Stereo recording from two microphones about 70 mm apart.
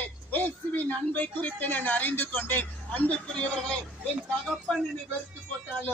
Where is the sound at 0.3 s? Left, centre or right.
Left.